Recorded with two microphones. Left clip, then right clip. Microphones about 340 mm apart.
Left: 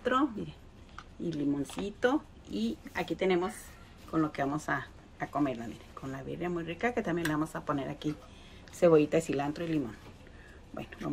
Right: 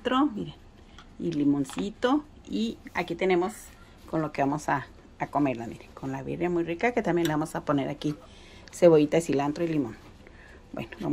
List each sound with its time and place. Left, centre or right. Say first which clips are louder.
0.0 s speech: right 3 dB; right
1.3 s speech: right 7 dB; right
10.8 s speech: right 5 dB; right